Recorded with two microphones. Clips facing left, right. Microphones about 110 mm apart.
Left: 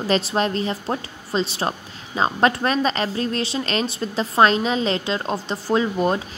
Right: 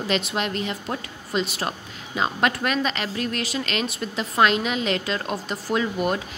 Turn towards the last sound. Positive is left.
turn(degrees=30)  # may be behind; listen again after turning